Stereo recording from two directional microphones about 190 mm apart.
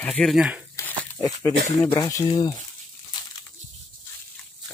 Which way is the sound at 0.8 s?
15° left (ahead or behind).